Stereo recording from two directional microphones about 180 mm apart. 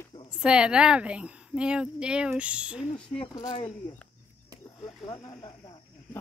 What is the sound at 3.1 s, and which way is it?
Speech, 20° left (ahead or behind).